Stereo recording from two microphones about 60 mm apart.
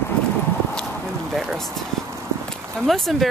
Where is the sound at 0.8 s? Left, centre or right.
Centre.